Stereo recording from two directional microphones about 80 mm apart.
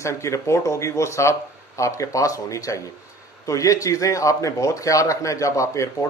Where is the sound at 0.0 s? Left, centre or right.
Left.